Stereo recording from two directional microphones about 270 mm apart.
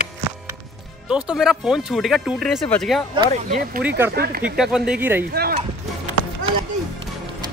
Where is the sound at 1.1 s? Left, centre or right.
Centre.